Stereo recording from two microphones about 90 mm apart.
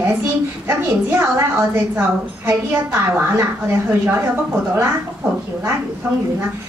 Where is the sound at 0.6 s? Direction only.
30° right (ahead or behind).